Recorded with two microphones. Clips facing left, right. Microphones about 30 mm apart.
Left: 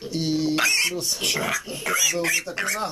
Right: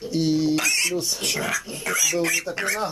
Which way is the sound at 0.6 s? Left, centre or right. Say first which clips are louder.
Left 1 dB; centre.